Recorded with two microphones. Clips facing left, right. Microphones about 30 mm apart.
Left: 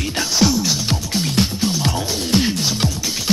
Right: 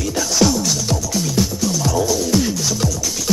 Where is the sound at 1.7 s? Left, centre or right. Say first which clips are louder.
Right 3 dB; left.